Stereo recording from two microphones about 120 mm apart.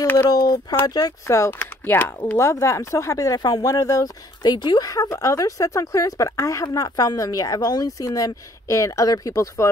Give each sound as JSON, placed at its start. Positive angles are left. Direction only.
{"t": 0.0, "sound": "speech", "side_deg": 15}
{"t": 0.3, "sound": "speech", "side_deg": 30}